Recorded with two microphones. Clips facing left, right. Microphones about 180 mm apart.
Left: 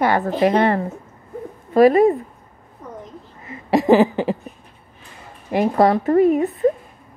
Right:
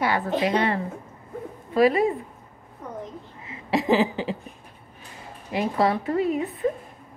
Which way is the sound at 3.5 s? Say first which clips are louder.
Left 7 dB; 50° left (ahead or behind).